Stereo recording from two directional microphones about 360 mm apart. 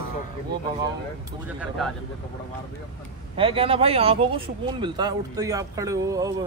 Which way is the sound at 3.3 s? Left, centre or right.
Centre.